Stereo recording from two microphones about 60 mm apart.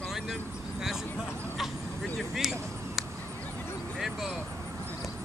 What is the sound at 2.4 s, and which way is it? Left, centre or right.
Speech, centre.